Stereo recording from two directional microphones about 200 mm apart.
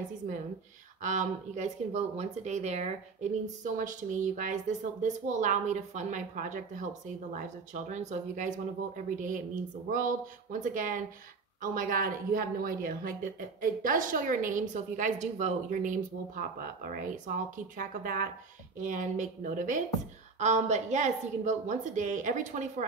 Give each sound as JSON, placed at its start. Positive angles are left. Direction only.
{"t": 1.0, "sound": "a woman's voice", "side_deg": -40}